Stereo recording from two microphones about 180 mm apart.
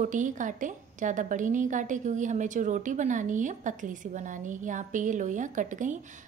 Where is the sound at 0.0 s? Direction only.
45° right (ahead or behind).